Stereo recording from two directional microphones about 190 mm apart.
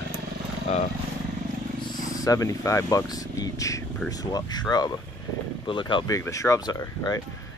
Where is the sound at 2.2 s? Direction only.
15° left (ahead or behind).